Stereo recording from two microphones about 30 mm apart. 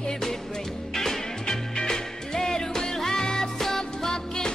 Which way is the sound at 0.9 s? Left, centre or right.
Centre.